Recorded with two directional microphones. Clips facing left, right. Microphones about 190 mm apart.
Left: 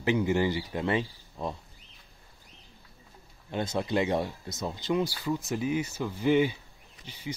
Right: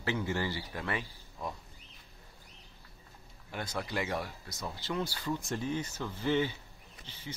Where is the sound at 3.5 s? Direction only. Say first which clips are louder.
Left 8 dB; 25° left (ahead or behind).